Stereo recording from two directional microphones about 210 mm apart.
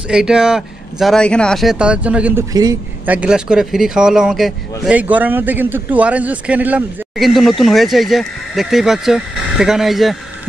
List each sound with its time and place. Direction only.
0.1 s a man's voice: 5° right (ahead or behind)
2.5 s speech: 15° right (ahead or behind)
3.1 s a man's voice: 5° right (ahead or behind)